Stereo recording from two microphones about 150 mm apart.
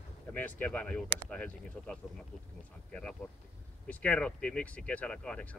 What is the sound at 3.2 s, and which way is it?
Speech, 10° left (ahead or behind).